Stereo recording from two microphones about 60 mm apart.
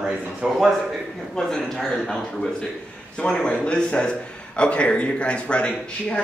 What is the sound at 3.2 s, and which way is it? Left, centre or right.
A man's voice, centre.